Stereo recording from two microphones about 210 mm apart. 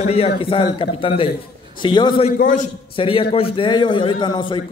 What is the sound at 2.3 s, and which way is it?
Speech, 40° left (ahead or behind).